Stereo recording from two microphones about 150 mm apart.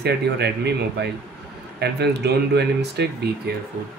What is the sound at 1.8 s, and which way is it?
Speech, 90° right.